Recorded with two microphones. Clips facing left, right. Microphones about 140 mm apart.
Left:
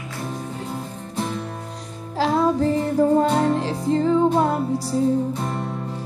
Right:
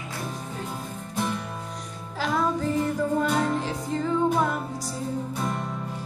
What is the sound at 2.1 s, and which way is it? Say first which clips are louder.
Music: left 6 dB; 30° left (ahead or behind).